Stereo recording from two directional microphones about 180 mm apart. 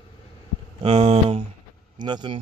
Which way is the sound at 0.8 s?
30° right (ahead or behind).